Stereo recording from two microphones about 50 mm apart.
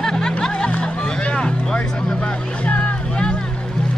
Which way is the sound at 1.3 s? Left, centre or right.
Centre.